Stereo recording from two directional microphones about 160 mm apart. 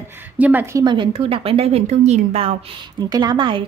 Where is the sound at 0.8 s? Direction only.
30° right (ahead or behind).